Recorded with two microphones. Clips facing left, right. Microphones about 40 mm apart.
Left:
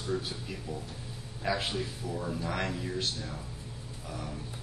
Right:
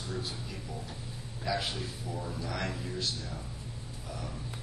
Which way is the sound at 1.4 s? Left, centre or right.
Left.